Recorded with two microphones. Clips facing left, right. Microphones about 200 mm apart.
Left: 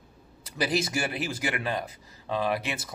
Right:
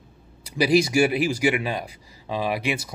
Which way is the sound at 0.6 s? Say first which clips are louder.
Right 9 dB; 10° right (ahead or behind).